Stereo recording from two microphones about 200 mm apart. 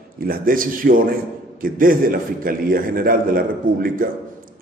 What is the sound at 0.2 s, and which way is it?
A man's voice, 45° right (ahead or behind).